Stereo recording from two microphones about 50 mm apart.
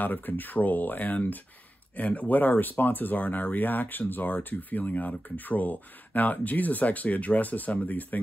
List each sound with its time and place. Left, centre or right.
0.0 s speech: left